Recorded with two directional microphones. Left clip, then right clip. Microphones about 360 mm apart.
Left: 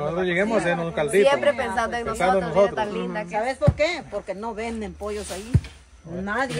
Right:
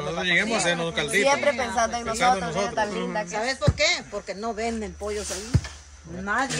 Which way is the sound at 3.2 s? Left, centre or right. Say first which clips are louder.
Left 5 dB; left.